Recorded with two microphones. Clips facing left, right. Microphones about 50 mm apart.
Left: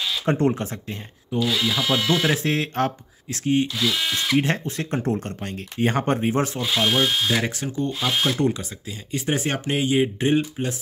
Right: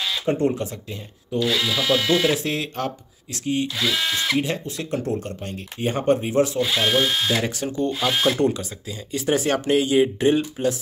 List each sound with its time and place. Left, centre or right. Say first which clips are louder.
0.2 s speech: left 1 dB; left
1.4 s speech: even; centre
2.3 s speech: left 2 dB; left
3.7 s speech: right 1 dB; centre
4.4 s speech: left 2 dB; left
6.6 s speech: right 1 dB; centre
8.5 s speech: right 2 dB; left